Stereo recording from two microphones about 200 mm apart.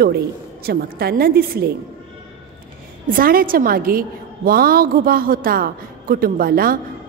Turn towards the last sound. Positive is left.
turn(degrees=-45)  # may be behind; listen again after turning